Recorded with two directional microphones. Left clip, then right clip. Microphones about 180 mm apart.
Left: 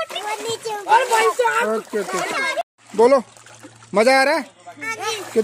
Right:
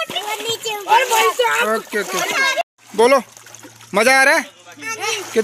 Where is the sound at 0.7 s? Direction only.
15° left (ahead or behind).